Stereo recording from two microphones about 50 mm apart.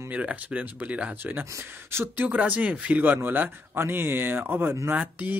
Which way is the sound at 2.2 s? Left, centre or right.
Right.